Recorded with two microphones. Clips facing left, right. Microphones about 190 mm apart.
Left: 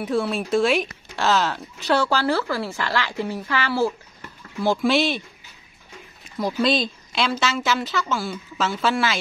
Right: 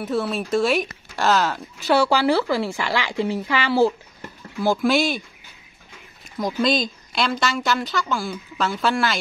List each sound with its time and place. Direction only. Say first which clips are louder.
0.0 s speech: left 1 dB; centre (ahead or behind)
1.9 s speech: right 3 dB; 10° right (ahead or behind)
4.6 s speech: right 1 dB; centre (ahead or behind)
6.3 s speech: even; 5° left (ahead or behind)